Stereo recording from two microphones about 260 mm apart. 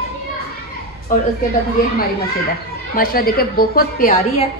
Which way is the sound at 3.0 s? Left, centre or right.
Left.